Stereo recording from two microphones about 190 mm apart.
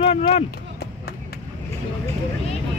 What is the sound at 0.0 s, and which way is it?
Speech, 30° left (ahead or behind).